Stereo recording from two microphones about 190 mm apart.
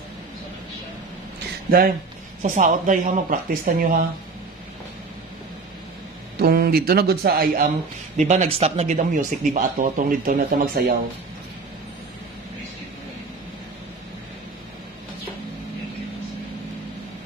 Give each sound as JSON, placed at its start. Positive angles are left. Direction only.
{"t": 2.4, "sound": "speech", "side_deg": -40}
{"t": 6.4, "sound": "speech", "side_deg": -55}
{"t": 8.3, "sound": "speech", "side_deg": -35}